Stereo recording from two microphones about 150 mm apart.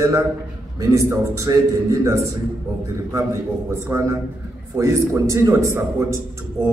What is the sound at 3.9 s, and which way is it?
A man's voice, 20° right (ahead or behind).